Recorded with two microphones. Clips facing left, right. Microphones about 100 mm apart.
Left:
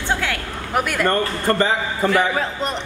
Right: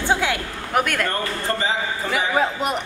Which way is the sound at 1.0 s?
55° left (ahead or behind).